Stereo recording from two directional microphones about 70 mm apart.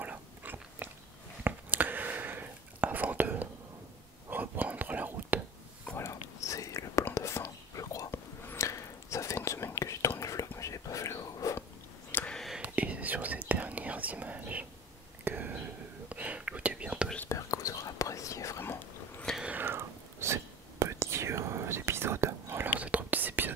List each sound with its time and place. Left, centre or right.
0.0 s biting: right
1.4 s whispering: right
5.9 s whispering: left
8.1 s whispering: left
12.1 s a sound: left
12.6 s whispering: centre
17.3 s whispering: left
18.6 s a sound: left
19.6 s whispering: right
22.7 s whispering: right